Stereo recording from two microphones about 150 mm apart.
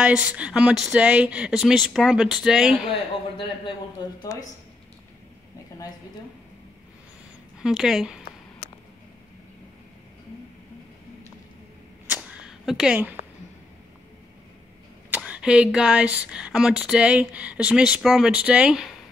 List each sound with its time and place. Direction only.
0.3 s speech: 5° right (ahead or behind)
4.3 s speech: 20° left (ahead or behind)
7.6 s speech: centre (ahead or behind)
12.1 s a sound: 10° right (ahead or behind)
15.0 s speech: 10° right (ahead or behind)